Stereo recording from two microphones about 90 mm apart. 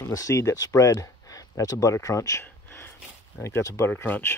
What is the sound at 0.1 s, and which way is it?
Speech, 35° left (ahead or behind).